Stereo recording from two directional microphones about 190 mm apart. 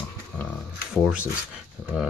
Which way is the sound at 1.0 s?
5° right (ahead or behind).